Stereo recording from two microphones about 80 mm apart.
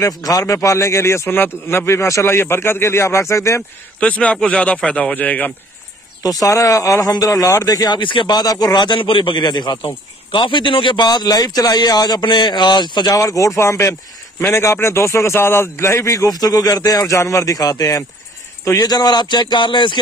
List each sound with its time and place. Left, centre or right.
0.2 s a man's voice: left
4.0 s speech: centre
6.2 s speech: left
8.0 s speech: left
13.1 s a man's voice: left